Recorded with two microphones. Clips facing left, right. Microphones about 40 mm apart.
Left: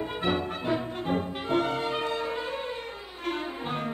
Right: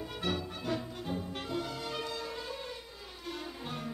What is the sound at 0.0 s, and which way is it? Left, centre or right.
Music, left.